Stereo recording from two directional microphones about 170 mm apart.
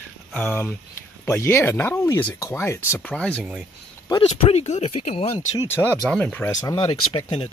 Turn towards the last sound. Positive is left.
turn(degrees=30)  # may be behind; listen again after turning